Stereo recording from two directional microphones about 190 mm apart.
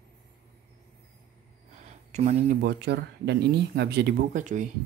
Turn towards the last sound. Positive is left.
turn(degrees=-40)  # may be behind; listen again after turning